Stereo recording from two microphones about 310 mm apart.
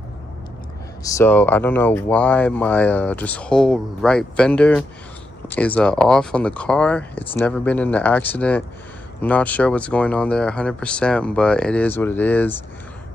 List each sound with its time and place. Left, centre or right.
1.0 s speech: centre